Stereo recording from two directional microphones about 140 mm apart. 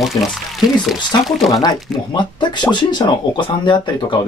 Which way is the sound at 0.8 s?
Centre (ahead or behind).